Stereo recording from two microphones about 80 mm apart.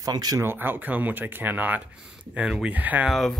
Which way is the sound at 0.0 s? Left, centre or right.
Right.